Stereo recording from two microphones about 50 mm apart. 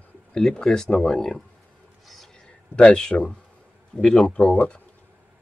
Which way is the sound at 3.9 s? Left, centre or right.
Centre.